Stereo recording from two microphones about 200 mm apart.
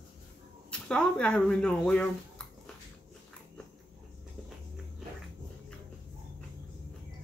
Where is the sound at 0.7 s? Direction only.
5° left (ahead or behind).